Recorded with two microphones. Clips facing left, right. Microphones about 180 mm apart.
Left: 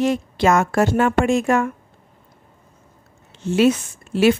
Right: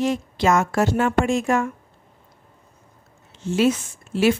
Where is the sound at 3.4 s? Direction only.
65° left (ahead or behind).